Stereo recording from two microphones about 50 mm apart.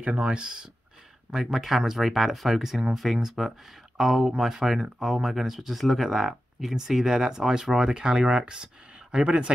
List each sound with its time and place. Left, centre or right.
0.0 s speech: right